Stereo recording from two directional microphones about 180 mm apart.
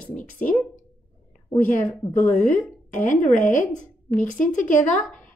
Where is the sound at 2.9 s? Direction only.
45° left (ahead or behind).